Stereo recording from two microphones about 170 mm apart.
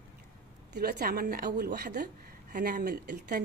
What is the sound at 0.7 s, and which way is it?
Speech, 65° right (ahead or behind).